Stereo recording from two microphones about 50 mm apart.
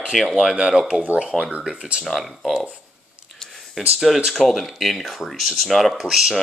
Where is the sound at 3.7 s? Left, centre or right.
Centre.